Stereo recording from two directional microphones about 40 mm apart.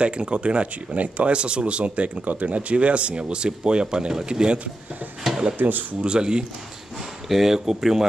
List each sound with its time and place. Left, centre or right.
0.0 s speech: right
5.6 s speech: right
5.9 s speech: right
7.2 s speech: centre